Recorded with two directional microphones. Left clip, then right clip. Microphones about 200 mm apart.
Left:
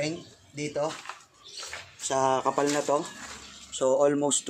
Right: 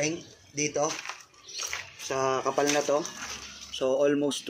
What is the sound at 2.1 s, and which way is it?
Speech, 55° left (ahead or behind).